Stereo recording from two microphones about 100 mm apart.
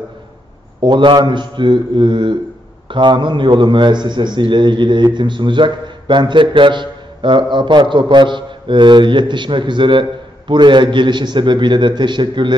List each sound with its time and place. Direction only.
0.7 s a man's voice: 50° right (ahead or behind)